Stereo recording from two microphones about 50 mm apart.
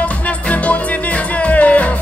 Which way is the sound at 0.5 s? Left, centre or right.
Left.